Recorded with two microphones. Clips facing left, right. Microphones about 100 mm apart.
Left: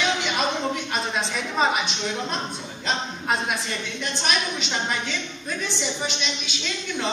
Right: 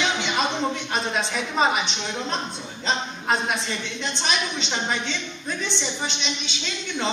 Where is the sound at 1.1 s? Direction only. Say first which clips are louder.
Right 1 dB; centre (ahead or behind).